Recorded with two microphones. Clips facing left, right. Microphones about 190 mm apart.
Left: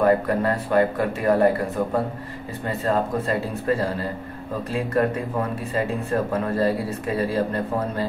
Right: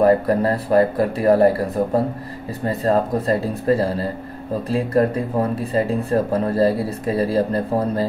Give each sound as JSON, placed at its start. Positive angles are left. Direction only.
{"t": 0.0, "sound": "speech", "side_deg": -35}
{"t": 2.6, "sound": "speech", "side_deg": -35}